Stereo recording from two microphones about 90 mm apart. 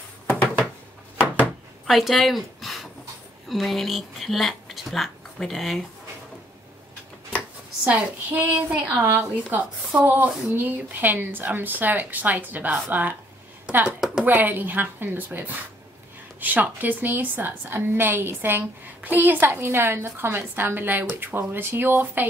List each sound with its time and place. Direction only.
1.9 s a woman's voice: centre (ahead or behind)
7.8 s a woman's voice: 15° right (ahead or behind)